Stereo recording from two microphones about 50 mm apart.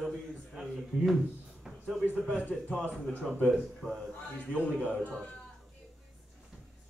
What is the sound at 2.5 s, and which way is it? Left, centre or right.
Speech, left.